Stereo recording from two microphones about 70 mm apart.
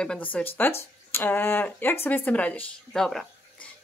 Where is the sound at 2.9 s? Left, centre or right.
Centre.